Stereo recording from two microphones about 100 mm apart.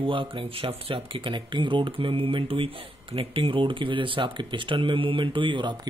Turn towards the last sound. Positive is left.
turn(degrees=-55)  # may be behind; listen again after turning